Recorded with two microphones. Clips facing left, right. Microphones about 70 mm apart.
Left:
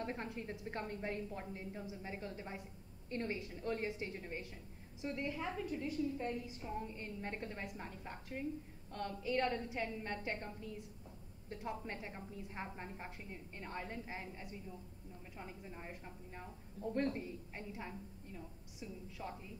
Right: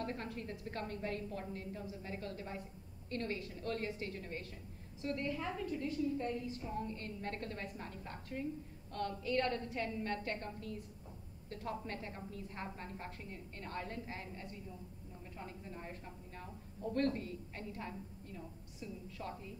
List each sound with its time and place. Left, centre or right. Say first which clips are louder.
0.0 s a woman's voice: right 1 dB; left